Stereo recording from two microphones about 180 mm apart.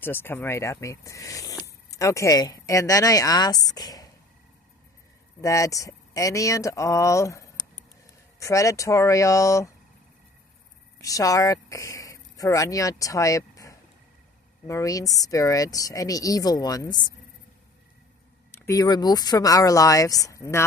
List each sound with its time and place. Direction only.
0.0 s speech: 10° left (ahead or behind)
5.4 s speech: 15° left (ahead or behind)
11.0 s speech: 20° left (ahead or behind)
18.5 s speech: 20° left (ahead or behind)